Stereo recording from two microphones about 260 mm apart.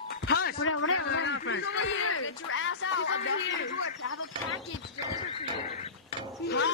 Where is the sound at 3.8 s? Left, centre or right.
Left.